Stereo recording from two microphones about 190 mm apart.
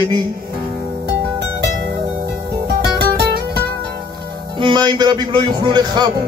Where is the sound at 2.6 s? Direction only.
60° right (ahead or behind).